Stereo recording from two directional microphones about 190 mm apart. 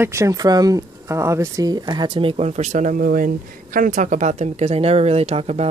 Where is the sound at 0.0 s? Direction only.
15° right (ahead or behind).